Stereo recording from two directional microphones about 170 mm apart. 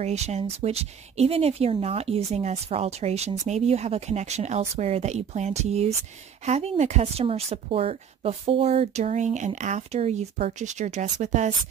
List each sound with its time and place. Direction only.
0.0 s speech: 40° right (ahead or behind)